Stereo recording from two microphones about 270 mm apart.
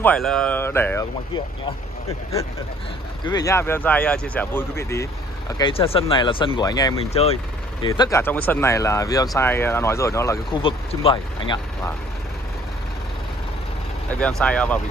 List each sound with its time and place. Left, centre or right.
0.0 s speech: centre
3.3 s speech: centre
5.6 s speech: centre
14.1 s speech: centre